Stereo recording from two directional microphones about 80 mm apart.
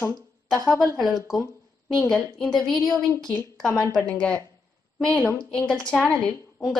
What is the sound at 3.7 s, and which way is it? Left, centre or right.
Speech, left.